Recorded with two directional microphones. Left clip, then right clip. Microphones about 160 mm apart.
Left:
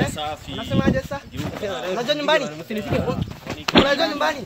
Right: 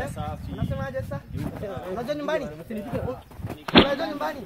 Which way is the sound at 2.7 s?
10° right (ahead or behind).